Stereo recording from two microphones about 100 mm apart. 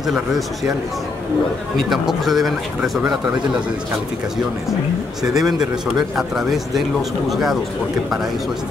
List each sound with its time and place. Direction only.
0.0 s speech: centre (ahead or behind)
1.8 s speech: centre (ahead or behind)
5.2 s speech: 5° right (ahead or behind)